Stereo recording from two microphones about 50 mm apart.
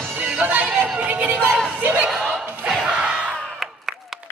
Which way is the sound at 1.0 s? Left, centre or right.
Right.